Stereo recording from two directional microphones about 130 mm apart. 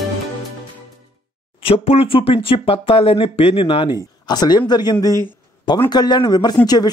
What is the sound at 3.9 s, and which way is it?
A woman's voice, 30° left (ahead or behind).